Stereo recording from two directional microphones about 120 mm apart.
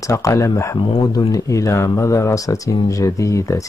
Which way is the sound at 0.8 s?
45° left (ahead or behind).